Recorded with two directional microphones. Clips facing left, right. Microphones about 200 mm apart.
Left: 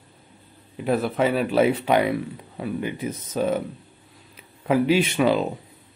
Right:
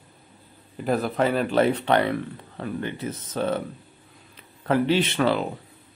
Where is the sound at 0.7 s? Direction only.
Centre (ahead or behind).